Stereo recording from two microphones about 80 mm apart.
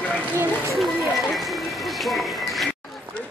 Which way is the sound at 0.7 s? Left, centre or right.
Centre.